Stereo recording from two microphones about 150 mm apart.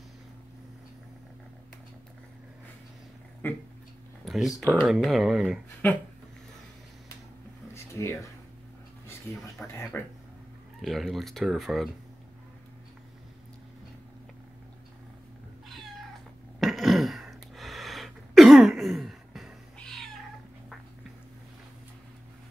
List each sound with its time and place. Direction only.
3.4 s speech: 10° left (ahead or behind)
4.2 s speech: centre (ahead or behind)
7.7 s a sound: 20° left (ahead or behind)
9.0 s speech: 15° left (ahead or behind)
10.8 s speech: centre (ahead or behind)
16.5 s throat clearing: centre (ahead or behind)